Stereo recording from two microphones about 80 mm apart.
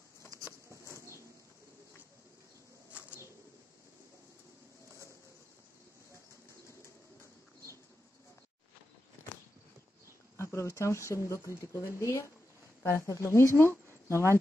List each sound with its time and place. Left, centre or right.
10.3 s speech: left